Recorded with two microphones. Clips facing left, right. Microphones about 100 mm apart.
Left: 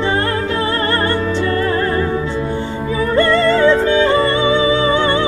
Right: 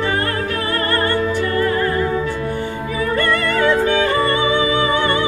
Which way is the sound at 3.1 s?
25° left (ahead or behind).